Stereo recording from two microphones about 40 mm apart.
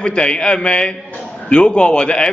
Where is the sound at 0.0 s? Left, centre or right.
Left.